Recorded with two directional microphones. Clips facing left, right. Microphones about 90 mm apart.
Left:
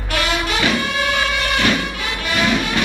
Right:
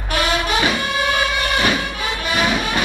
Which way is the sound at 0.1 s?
20° right (ahead or behind).